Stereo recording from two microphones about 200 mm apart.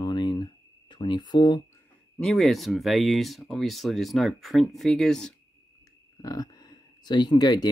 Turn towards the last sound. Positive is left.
turn(degrees=20)  # may be behind; listen again after turning